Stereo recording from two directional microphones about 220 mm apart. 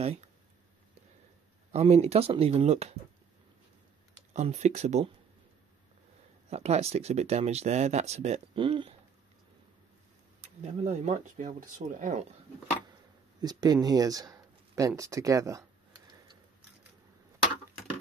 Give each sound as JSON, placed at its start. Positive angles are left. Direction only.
{"t": 1.7, "sound": "speech", "side_deg": -30}
{"t": 4.3, "sound": "speech", "side_deg": -30}
{"t": 6.5, "sound": "speech", "side_deg": -30}
{"t": 10.4, "sound": "speech", "side_deg": -30}
{"t": 13.4, "sound": "speech", "side_deg": -20}